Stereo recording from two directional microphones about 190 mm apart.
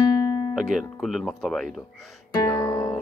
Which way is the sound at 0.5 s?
Centre (ahead or behind).